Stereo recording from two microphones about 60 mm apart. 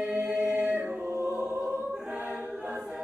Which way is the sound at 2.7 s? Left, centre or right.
Centre.